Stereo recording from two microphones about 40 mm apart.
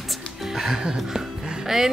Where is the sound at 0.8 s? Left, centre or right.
Centre.